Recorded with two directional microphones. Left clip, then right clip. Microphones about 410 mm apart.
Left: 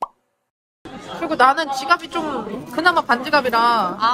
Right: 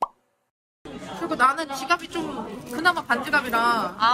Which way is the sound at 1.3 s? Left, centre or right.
Centre.